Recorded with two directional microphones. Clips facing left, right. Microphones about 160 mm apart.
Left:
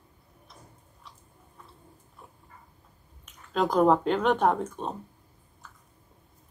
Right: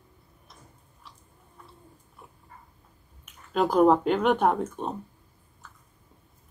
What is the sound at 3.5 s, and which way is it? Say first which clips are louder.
Speech: right 2 dB; 5° right (ahead or behind).